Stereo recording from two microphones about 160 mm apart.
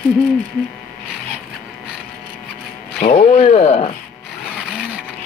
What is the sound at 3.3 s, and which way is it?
Speech, 40° left (ahead or behind).